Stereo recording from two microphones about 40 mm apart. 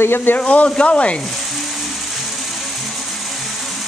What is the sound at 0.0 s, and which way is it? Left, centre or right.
Speech, left.